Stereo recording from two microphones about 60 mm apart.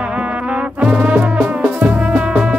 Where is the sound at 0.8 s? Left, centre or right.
Right.